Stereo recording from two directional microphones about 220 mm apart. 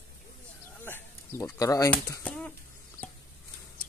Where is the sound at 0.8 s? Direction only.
10° left (ahead or behind).